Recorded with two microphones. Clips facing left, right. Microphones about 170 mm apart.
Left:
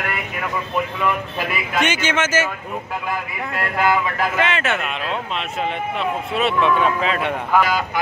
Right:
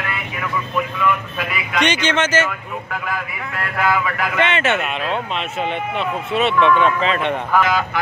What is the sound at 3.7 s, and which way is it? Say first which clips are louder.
Speech: even; 25° left (ahead or behind).